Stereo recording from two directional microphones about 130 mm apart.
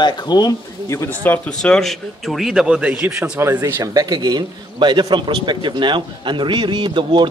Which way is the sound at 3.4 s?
20° right (ahead or behind).